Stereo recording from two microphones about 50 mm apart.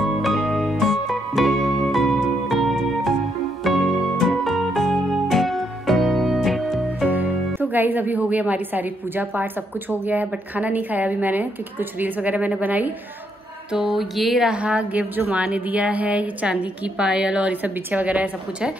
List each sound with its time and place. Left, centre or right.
0.0 s music: centre
7.1 s speech: right
13.7 s a sound: centre
14.5 s a woman's voice: right